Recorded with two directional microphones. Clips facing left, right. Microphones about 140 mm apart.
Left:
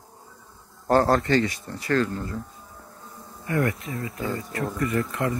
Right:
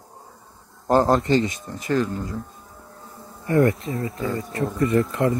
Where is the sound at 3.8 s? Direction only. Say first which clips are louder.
Right 4 dB; 25° right (ahead or behind).